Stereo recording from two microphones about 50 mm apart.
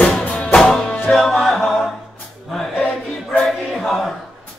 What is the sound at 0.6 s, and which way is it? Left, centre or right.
Music, centre.